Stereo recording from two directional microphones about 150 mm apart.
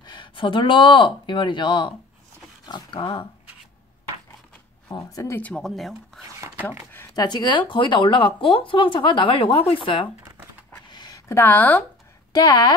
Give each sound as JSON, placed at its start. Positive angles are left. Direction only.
{"t": 0.0, "sound": "speech", "side_deg": 30}
{"t": 4.9, "sound": "speech", "side_deg": 20}
{"t": 6.4, "sound": "a sound", "side_deg": -15}
{"t": 6.9, "sound": "speech", "side_deg": 15}
{"t": 7.2, "sound": "speech", "side_deg": 30}
{"t": 10.9, "sound": "a sound", "side_deg": 25}
{"t": 12.3, "sound": "speech", "side_deg": 25}